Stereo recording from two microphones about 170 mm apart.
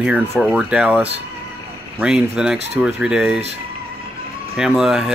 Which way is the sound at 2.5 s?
40° right (ahead or behind).